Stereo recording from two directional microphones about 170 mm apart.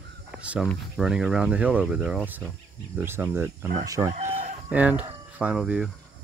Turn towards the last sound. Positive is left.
turn(degrees=-5)  # may be behind; listen again after turning